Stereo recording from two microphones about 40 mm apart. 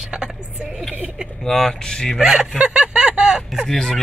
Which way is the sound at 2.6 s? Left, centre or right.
Right.